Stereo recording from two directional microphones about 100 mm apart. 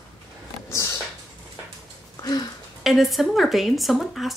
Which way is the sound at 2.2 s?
40° left (ahead or behind).